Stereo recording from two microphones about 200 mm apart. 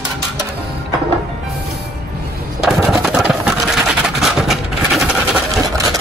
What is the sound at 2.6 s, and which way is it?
Sewing machine, 5° right (ahead or behind).